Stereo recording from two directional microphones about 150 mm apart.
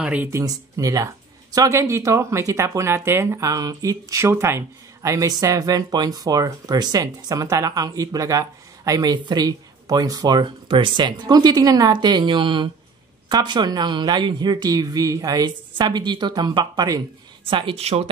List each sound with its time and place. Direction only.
0.0 s speech: 10° right (ahead or behind); by 17.0 s 25° right (ahead or behind)
17.5 s speech: 35° right (ahead or behind)